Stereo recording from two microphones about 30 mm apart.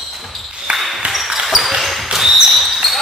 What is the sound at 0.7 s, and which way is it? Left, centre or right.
Basketball bounce, right.